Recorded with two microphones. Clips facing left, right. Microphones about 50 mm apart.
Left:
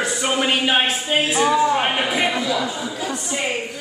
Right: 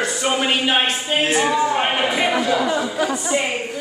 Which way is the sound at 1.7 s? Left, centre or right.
Centre.